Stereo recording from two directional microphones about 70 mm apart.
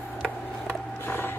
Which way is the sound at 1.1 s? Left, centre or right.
Left.